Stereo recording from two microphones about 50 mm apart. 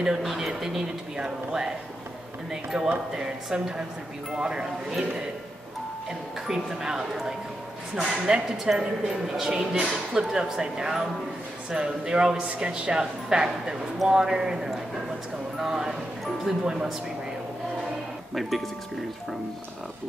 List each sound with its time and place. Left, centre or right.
0.0 s speech: centre
6.4 s speech: centre
8.1 s speech: centre
18.3 s speech: centre